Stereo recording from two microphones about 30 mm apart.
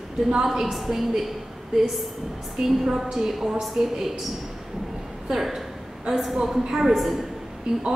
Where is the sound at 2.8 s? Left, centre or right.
Centre.